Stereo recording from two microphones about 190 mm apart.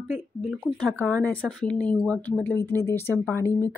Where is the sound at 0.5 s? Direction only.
5° left (ahead or behind).